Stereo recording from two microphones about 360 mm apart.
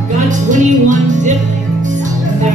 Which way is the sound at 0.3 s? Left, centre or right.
Right.